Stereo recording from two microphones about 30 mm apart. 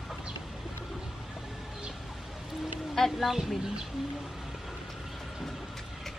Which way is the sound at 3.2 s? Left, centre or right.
Centre.